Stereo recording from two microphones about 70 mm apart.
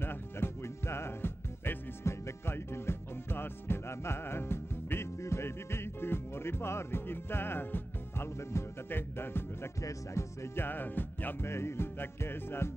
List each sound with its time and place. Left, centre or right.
0.0 s music: left
9.8 s music: left
11.5 s music: left